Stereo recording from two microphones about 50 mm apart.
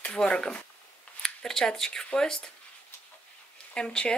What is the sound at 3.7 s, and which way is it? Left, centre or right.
Speech, centre.